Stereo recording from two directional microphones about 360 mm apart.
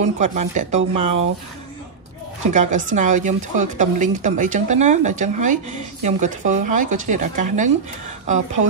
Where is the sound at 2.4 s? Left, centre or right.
Centre.